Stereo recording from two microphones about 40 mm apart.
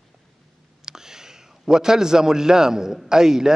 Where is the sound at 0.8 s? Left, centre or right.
Centre.